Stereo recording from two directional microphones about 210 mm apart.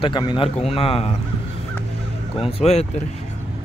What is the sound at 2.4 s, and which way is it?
Speech, 25° left (ahead or behind).